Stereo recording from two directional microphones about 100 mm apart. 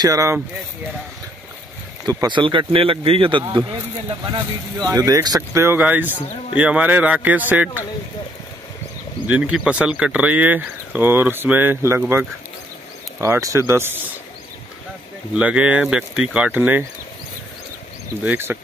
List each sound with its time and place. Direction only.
0.0 s speech: 35° right (ahead or behind)
2.2 s speech: 55° right (ahead or behind); by 5.6 s 35° right (ahead or behind)
5.6 s speech: 20° right (ahead or behind)
9.3 s speech: 10° right (ahead or behind)
13.2 s speech: 30° right (ahead or behind)
15.3 s speech: 10° right (ahead or behind)
18.2 s speech: 20° right (ahead or behind)